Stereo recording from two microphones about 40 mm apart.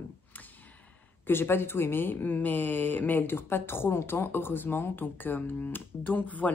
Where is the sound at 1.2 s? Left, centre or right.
Left.